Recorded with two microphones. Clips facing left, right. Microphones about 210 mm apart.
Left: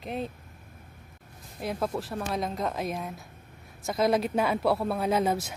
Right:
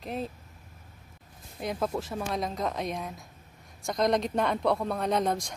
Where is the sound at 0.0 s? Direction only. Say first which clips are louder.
Left 1 dB; centre (ahead or behind).